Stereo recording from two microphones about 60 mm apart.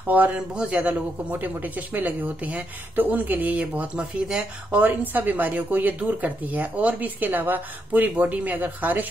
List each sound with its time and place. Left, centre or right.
0.0 s speech: right
0.6 s a man's voice: centre
1.3 s speech: right